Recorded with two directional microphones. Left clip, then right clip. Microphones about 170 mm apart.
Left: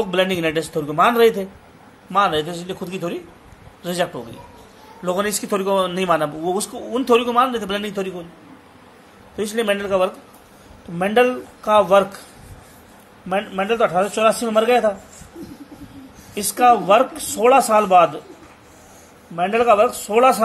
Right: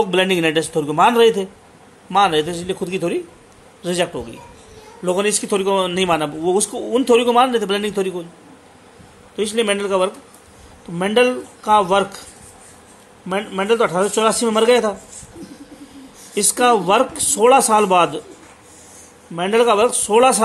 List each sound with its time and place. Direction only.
0.0 s a man's voice: 35° right (ahead or behind)
9.4 s a man's voice: 20° right (ahead or behind)
13.3 s a man's voice: 30° right (ahead or behind)
16.3 s a man's voice: 35° right (ahead or behind)
19.3 s a man's voice: 40° right (ahead or behind)